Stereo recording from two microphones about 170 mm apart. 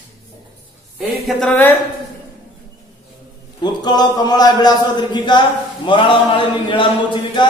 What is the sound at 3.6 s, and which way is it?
A man's voice, 25° left (ahead or behind).